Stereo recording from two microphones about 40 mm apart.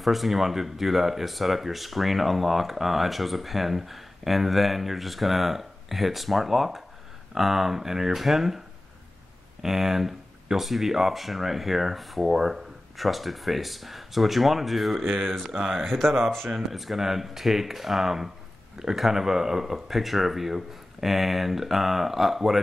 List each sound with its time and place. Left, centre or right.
0.0 s speech: centre
9.6 s speech: centre
15.5 s speech: centre
15.8 s speech: centre